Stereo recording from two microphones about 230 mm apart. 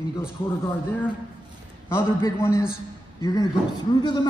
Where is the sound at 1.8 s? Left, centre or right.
Centre.